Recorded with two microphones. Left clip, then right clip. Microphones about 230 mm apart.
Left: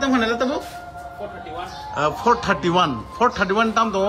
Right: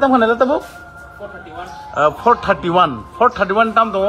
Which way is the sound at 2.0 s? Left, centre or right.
Centre.